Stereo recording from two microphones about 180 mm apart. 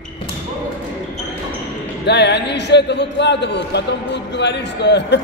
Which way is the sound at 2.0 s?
70° left (ahead or behind).